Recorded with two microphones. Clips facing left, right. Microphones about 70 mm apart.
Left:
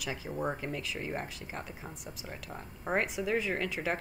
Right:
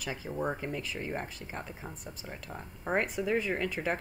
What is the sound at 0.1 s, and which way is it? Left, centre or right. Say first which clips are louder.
Speech: right 1 dB; centre.